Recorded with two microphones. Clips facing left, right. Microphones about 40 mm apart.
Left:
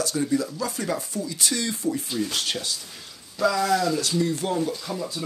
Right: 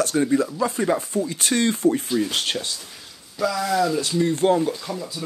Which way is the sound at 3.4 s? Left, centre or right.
Centre.